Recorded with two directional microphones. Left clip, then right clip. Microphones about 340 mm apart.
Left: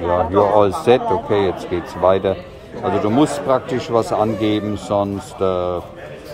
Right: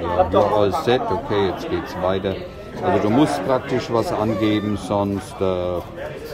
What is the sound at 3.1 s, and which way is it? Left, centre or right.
A man's voice, centre.